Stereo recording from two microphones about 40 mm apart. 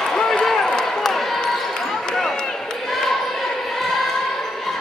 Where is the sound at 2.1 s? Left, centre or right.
Centre.